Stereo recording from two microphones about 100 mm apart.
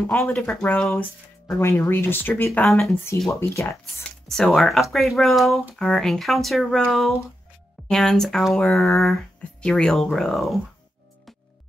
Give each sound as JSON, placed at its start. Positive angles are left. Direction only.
{"t": 0.5, "sound": "speech", "side_deg": 10}
{"t": 1.6, "sound": "speech", "side_deg": 25}
{"t": 2.6, "sound": "speech", "side_deg": 5}
{"t": 3.3, "sound": "speech", "side_deg": 30}
{"t": 3.8, "sound": "speech", "side_deg": 5}